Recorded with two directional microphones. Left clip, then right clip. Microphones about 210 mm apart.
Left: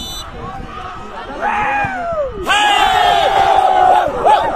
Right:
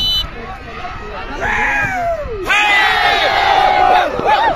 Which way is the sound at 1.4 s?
25° left (ahead or behind).